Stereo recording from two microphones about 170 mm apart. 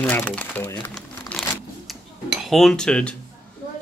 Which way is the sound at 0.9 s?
Centre (ahead or behind).